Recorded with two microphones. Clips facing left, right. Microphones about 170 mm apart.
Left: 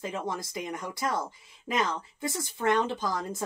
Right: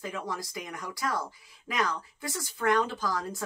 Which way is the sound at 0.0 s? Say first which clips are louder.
Left 2 dB; 25° left (ahead or behind).